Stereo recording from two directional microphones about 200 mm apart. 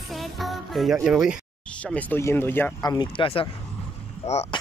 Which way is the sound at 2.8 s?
25° left (ahead or behind).